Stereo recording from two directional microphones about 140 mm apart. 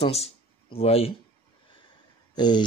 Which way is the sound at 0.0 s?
45° left (ahead or behind).